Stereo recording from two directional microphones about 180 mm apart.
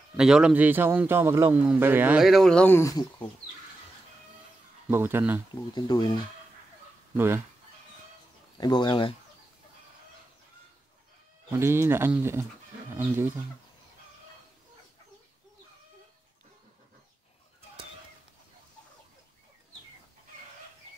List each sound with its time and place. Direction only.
0.2 s a man's voice: 5° right (ahead or behind); by 3.3 s 20° left (ahead or behind)
4.8 s a man's voice: 10° right (ahead or behind)
5.5 s speech: 25° left (ahead or behind)
7.2 s a man's voice: 10° right (ahead or behind)
8.5 s speech: 25° left (ahead or behind)
11.5 s a man's voice: 15° right (ahead or behind)